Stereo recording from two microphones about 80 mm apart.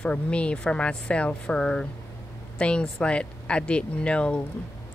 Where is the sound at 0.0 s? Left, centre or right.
Centre.